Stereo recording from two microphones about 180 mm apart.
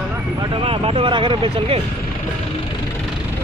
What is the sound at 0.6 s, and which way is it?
Speech, 30° right (ahead or behind).